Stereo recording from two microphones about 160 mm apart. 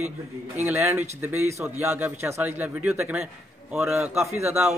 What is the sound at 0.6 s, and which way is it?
A man's voice, 15° right (ahead or behind).